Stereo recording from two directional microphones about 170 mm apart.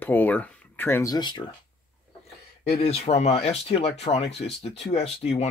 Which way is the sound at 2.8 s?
40° left (ahead or behind).